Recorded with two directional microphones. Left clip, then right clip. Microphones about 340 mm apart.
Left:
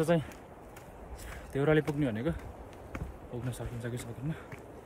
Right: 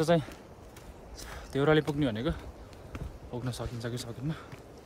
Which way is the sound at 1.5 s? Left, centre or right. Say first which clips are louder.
Right 2 dB; centre.